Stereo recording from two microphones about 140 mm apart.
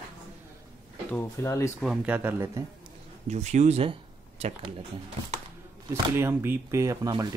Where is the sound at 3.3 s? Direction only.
55° right (ahead or behind).